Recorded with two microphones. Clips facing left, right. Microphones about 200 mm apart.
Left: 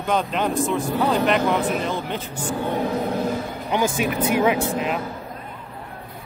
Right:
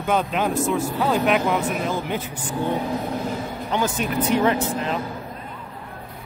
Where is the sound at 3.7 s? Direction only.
10° left (ahead or behind).